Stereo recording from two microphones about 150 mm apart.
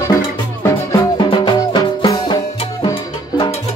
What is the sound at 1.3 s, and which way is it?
Music, 30° left (ahead or behind).